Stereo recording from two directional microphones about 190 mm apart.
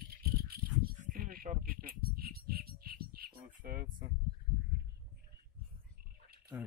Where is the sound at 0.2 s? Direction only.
55° right (ahead or behind).